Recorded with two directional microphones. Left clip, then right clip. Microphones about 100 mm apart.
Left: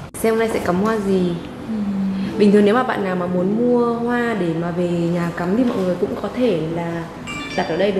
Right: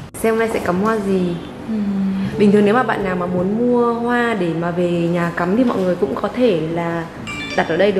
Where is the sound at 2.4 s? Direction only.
15° left (ahead or behind).